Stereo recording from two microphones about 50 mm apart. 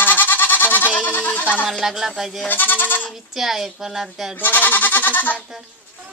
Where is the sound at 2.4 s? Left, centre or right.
Left.